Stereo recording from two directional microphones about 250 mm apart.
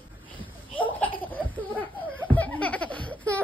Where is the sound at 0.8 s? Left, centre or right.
Centre.